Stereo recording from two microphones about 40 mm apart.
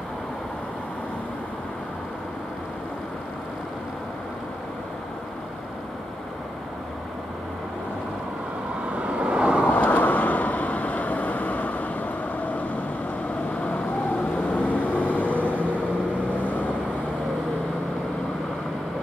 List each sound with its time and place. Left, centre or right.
8.9 s vehicle: right
9.7 s vehicle: left
14.5 s vehicle: left